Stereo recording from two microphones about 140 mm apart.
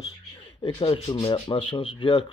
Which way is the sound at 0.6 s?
40° left (ahead or behind).